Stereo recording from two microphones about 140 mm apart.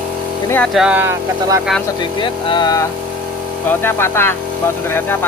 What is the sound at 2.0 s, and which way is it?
Speech, 35° left (ahead or behind).